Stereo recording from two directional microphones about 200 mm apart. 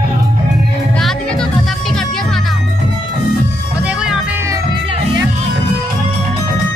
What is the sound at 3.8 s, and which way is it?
Music, 5° right (ahead or behind).